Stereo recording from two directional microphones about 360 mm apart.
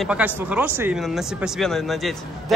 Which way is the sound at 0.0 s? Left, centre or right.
Centre.